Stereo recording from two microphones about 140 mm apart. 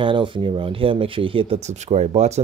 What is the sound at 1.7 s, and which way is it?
Speech, 50° right (ahead or behind).